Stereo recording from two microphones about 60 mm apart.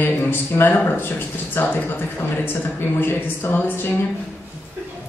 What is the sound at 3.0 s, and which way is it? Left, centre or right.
Speech, left.